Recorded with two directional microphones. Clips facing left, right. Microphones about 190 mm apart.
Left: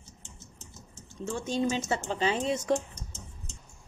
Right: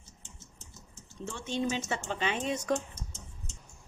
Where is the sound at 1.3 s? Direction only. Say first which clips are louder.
Left 4 dB; 40° left (ahead or behind).